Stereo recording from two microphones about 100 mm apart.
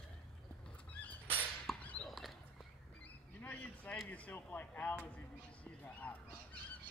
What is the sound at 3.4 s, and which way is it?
Speech, 15° left (ahead or behind).